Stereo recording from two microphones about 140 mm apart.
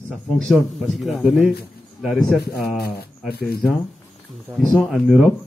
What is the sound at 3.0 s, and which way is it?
Speech, 90° left.